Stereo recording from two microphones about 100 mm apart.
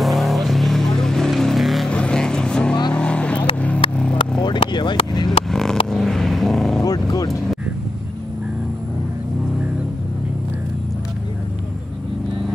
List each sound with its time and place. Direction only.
0.0 s vehicle: centre (ahead or behind)
1.9 s vehicle: 10° left (ahead or behind)
4.4 s vehicle: 50° left (ahead or behind)
5.5 s vehicle: 5° left (ahead or behind)
6.8 s vehicle: 40° left (ahead or behind)